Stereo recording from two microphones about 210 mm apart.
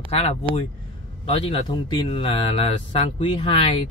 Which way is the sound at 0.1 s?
30° left (ahead or behind).